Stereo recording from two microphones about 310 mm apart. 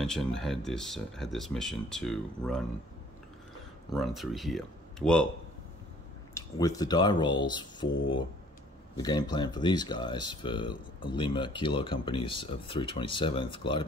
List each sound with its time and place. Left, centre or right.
0.0 s speech: centre
3.9 s speech: centre
6.3 s speech: centre